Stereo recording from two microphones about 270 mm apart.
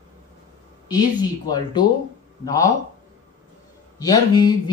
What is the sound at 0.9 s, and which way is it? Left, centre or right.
Speech, centre.